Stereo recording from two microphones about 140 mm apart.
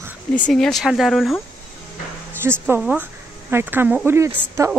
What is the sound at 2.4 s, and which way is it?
Speech, 15° right (ahead or behind).